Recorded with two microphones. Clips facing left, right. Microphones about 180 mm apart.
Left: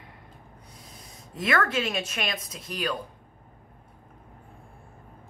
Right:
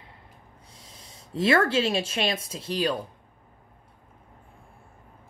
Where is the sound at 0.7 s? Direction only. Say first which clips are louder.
Left 1 dB; 25° right (ahead or behind).